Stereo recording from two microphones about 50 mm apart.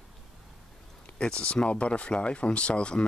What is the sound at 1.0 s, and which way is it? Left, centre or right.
Speech, centre.